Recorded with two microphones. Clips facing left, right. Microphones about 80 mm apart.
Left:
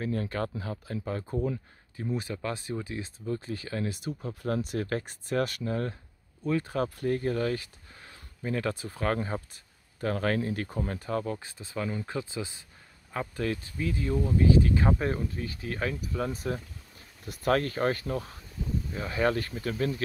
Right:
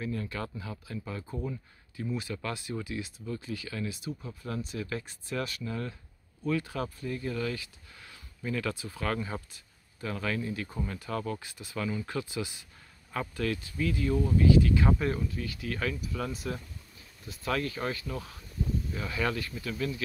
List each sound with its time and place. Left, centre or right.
0.0 s speech: left
2.0 s speech: left
7.0 s speech: left
9.9 s speech: left
11.1 s speech: left
17.2 s speech: left